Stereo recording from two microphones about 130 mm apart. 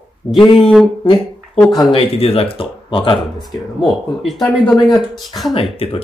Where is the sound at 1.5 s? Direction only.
5° left (ahead or behind).